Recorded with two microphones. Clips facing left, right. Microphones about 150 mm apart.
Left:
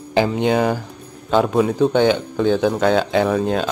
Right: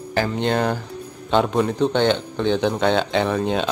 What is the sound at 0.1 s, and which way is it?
Speech, 15° left (ahead or behind).